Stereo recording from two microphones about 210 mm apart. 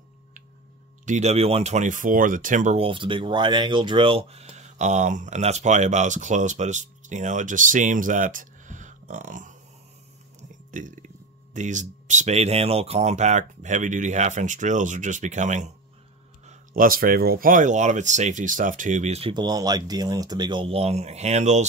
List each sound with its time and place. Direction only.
1.0 s speech: 35° right (ahead or behind)
10.7 s speech: 35° right (ahead or behind)